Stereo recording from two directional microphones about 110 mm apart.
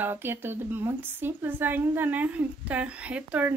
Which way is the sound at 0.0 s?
20° right (ahead or behind).